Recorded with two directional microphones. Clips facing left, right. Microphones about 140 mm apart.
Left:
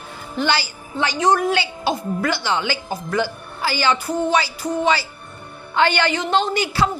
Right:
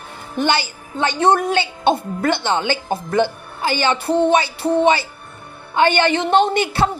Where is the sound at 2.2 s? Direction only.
55° right (ahead or behind).